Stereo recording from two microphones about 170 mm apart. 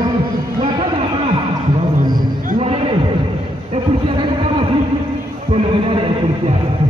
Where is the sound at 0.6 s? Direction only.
35° right (ahead or behind).